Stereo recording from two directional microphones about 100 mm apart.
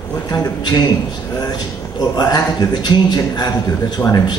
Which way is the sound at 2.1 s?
45° left (ahead or behind).